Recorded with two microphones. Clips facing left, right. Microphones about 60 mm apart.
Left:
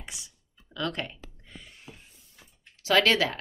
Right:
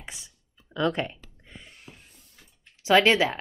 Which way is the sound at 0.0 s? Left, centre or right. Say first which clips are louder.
Right 2 dB; right.